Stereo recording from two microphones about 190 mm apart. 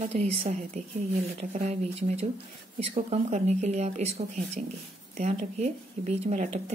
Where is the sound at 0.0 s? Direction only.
35° right (ahead or behind).